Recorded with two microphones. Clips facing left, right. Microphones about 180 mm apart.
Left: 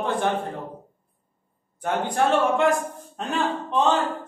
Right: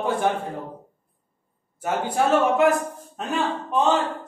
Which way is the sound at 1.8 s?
5° right (ahead or behind).